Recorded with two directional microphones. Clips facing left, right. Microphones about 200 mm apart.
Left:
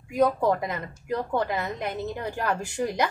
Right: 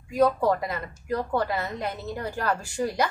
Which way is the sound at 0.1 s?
20° left (ahead or behind).